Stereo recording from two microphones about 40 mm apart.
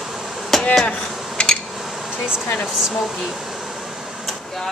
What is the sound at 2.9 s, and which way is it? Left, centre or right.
Air conditioning, centre.